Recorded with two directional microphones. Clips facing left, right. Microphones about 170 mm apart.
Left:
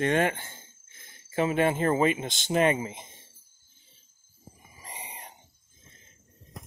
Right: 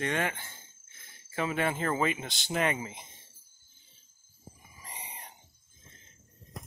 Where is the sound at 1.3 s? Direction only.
25° left (ahead or behind).